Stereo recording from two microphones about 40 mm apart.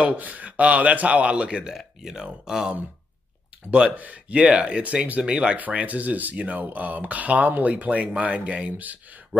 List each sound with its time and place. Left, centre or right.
0.0 s speech: right
1.7 s speech: centre
3.9 s speech: right
4.3 s speech: right
5.2 s speech: right
5.6 s speech: right